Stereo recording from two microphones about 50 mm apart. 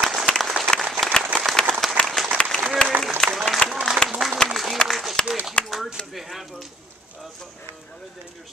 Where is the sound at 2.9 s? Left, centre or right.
Right.